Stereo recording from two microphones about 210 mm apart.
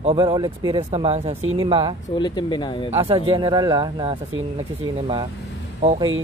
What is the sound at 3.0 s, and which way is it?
Speech, 25° right (ahead or behind).